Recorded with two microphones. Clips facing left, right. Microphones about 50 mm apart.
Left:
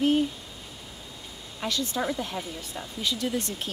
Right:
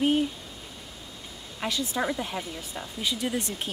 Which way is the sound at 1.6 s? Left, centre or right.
Centre.